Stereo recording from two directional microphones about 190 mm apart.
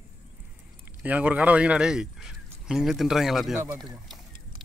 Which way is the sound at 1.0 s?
10° right (ahead or behind).